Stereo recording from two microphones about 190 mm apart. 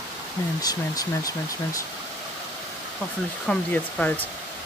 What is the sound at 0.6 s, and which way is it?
Speech, 20° left (ahead or behind).